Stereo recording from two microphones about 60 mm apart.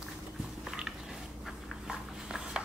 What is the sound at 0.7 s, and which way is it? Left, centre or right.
Biting, centre.